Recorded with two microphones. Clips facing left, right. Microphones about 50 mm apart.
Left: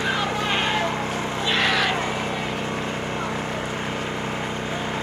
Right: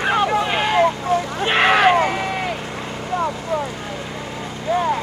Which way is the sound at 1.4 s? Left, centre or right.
Right.